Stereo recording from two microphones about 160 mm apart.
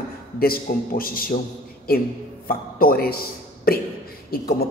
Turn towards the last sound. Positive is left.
turn(degrees=65)  # may be behind; listen again after turning